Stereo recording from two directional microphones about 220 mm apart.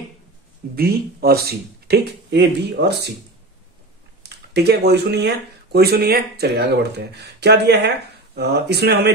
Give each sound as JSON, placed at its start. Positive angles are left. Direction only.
{"t": 0.7, "sound": "speech", "side_deg": -45}
{"t": 4.2, "sound": "speech", "side_deg": -50}